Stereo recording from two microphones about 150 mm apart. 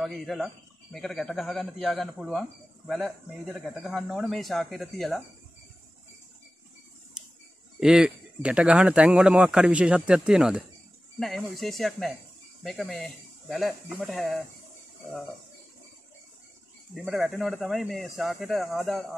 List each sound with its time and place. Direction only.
0.0 s speech: centre (ahead or behind)
7.8 s speech: 5° right (ahead or behind)
16.9 s speech: centre (ahead or behind)